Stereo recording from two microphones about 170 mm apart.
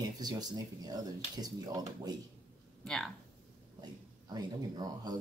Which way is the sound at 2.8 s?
5° left (ahead or behind).